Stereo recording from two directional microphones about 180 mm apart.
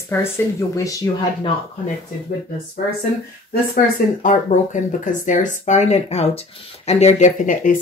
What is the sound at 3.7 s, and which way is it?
Speech, 50° left (ahead or behind).